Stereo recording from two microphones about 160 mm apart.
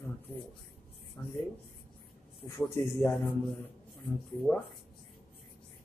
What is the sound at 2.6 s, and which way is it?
Speech, 15° left (ahead or behind).